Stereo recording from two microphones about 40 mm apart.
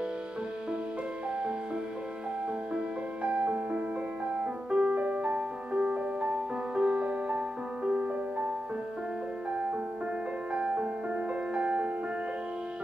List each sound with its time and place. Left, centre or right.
3.4 s music: right
4.3 s music: right
4.9 s music: right
9.5 s music: right